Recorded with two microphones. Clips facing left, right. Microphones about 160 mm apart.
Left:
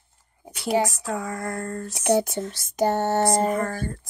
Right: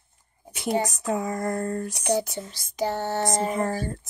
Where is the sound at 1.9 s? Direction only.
55° left (ahead or behind).